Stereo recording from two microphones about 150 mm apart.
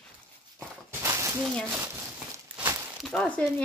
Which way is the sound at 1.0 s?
20° right (ahead or behind).